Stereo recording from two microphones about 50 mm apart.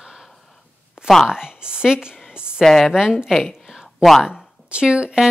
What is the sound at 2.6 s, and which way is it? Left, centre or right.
Speech, centre.